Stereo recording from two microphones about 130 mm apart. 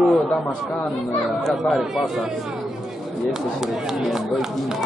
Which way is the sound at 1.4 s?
Centre (ahead or behind).